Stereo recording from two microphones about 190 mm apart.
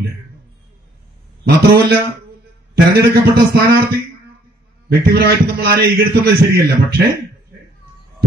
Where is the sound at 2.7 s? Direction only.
55° right (ahead or behind).